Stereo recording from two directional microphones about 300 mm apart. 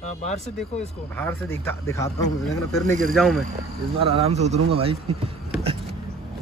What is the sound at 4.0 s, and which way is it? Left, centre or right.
Speech, centre.